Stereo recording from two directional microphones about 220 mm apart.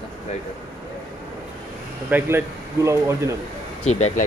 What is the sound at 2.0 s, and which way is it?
Speech, 10° right (ahead or behind).